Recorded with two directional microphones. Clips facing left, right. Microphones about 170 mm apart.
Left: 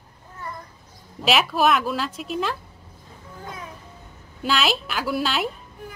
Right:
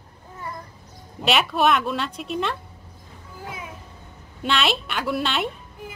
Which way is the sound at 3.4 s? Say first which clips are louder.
Right 1 dB; 5° right (ahead or behind).